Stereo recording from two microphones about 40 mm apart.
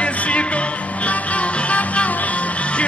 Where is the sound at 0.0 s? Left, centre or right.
Left.